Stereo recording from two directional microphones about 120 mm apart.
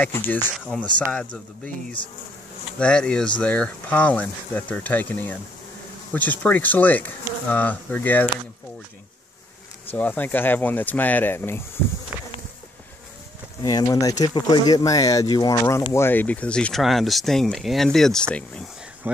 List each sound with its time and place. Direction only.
0.7 s speech: 10° left (ahead or behind)
2.8 s speech: 5° left (ahead or behind)
9.8 s speech: 15° left (ahead or behind)
12.1 s insect: 10° right (ahead or behind)
13.6 s speech: 30° left (ahead or behind); by 18.2 s 5° left (ahead or behind)
19.1 s speech: 15° right (ahead or behind)